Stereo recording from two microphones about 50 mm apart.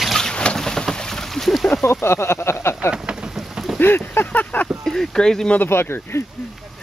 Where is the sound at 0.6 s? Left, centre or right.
Centre.